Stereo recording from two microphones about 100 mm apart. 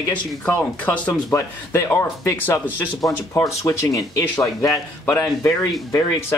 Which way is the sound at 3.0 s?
35° left (ahead or behind).